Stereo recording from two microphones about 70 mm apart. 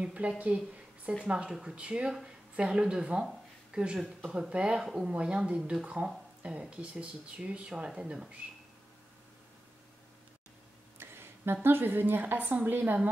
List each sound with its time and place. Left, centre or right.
0.0 s speech: centre
11.0 s a woman's voice: right